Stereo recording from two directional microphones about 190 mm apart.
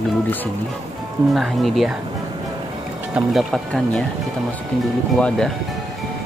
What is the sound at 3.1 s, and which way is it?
Speech, centre (ahead or behind).